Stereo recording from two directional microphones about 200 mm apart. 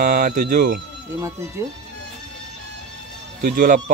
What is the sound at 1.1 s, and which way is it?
Speech, 15° right (ahead or behind).